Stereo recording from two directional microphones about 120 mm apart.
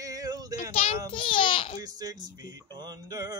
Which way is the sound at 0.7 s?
60° left (ahead or behind).